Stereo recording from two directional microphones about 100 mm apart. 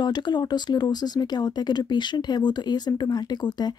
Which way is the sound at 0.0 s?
45° left (ahead or behind).